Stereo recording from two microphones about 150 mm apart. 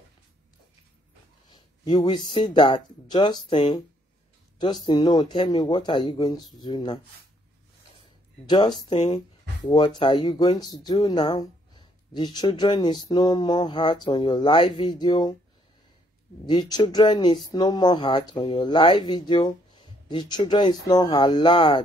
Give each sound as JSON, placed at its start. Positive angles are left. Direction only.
{"t": 2.0, "sound": "speech", "side_deg": 30}
{"t": 8.5, "sound": "speech", "side_deg": 30}
{"t": 9.1, "sound": "speech", "side_deg": 40}
{"t": 13.7, "sound": "speech", "side_deg": 40}
{"t": 13.9, "sound": "speech", "side_deg": 30}
{"t": 16.4, "sound": "speech", "side_deg": 30}